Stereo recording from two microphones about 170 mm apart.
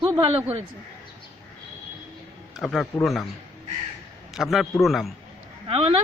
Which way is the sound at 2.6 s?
Centre (ahead or behind).